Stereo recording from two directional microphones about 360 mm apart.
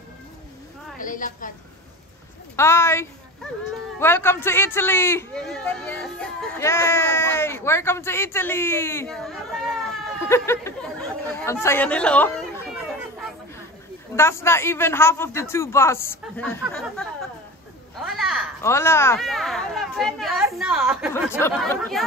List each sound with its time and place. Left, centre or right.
0.9 s a woman's voice: left
2.5 s a man's voice: centre
14.1 s a man's voice: centre